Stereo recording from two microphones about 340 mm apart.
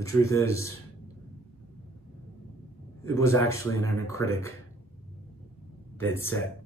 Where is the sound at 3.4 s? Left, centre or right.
Left.